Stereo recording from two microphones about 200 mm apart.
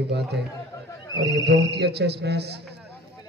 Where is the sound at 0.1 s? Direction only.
55° right (ahead or behind).